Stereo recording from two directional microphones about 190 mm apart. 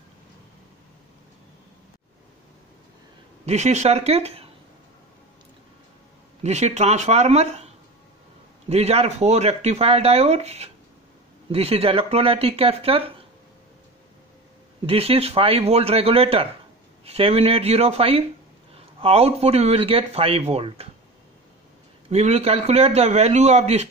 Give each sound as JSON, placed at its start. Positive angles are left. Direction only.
{"t": 3.4, "sound": "speech", "side_deg": -35}
{"t": 6.4, "sound": "speech", "side_deg": -35}
{"t": 14.9, "sound": "speech", "side_deg": -30}
{"t": 22.1, "sound": "speech", "side_deg": -35}